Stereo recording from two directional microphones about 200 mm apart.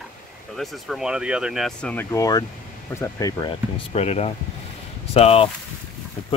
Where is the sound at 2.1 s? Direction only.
20° left (ahead or behind).